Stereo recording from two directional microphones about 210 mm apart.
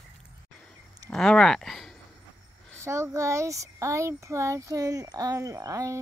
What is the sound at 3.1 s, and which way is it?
Speech, 15° right (ahead or behind).